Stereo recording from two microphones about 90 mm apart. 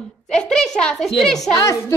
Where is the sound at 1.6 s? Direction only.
35° left (ahead or behind).